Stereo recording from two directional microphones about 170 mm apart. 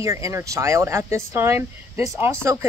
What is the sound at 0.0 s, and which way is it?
Speech, 20° right (ahead or behind).